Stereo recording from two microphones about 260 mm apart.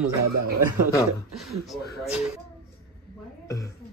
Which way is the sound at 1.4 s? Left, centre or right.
Centre.